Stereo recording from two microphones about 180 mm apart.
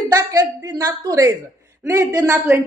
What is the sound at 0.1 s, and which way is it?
A woman's voice, 20° right (ahead or behind).